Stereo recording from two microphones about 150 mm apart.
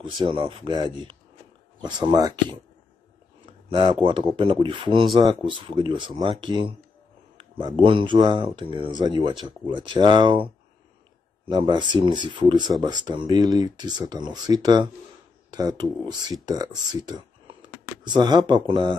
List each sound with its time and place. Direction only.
0.0 s speech: 30° right (ahead or behind)
3.6 s speech: 35° right (ahead or behind)